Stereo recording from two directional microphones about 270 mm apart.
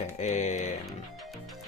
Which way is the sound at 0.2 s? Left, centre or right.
Left.